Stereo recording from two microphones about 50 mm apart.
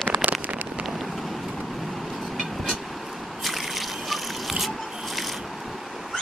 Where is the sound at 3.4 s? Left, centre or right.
Centre.